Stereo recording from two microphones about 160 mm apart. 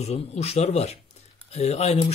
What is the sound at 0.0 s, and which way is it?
A man's voice, 40° left (ahead or behind).